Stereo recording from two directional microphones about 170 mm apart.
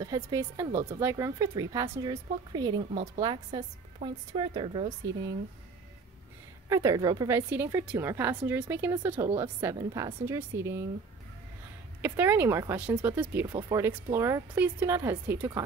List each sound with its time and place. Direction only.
0.0 s a woman's voice: 20° right (ahead or behind)
6.7 s a woman's voice: 20° right (ahead or behind)
12.0 s a woman's voice: 10° right (ahead or behind)